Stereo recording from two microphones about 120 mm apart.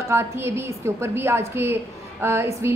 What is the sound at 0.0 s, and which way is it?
A woman's voice, 20° right (ahead or behind).